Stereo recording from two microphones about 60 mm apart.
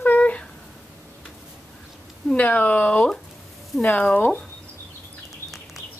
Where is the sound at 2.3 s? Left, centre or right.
Left.